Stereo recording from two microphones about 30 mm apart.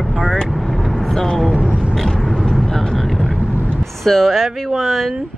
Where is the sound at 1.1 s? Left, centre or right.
Centre.